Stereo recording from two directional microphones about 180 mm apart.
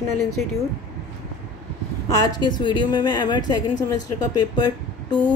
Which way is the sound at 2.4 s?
25° left (ahead or behind).